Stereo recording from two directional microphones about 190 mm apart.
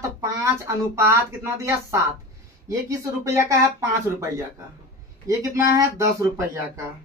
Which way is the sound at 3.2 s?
15° right (ahead or behind).